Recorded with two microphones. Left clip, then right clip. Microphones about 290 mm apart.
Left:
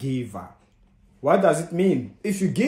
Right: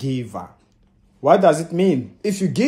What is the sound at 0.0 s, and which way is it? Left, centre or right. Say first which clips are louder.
Speech: right 3 dB; centre.